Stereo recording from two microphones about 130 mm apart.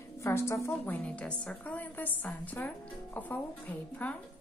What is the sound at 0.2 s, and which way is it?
Speech, 20° left (ahead or behind).